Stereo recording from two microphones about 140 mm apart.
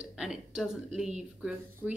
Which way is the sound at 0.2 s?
5° right (ahead or behind).